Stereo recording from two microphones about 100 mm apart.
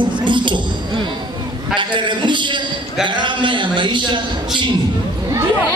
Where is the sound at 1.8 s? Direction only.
55° right (ahead or behind).